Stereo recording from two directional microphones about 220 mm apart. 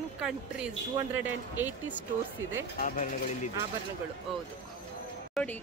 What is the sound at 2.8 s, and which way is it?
Speech, 35° left (ahead or behind).